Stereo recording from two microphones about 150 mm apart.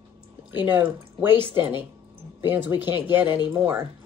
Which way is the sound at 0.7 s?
10° right (ahead or behind).